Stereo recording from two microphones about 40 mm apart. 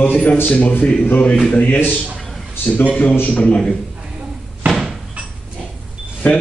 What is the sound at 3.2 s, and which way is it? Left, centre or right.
Speech, left.